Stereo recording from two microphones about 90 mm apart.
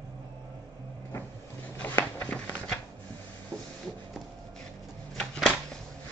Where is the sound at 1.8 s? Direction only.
20° left (ahead or behind).